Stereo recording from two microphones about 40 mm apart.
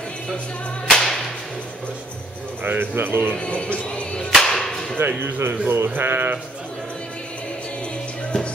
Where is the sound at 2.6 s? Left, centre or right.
Right.